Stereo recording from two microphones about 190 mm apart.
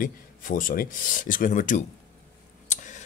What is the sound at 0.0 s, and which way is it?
Speech, 45° left (ahead or behind).